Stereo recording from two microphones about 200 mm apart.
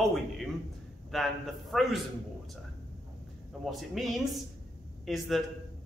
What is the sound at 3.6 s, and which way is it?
A man's voice, centre (ahead or behind).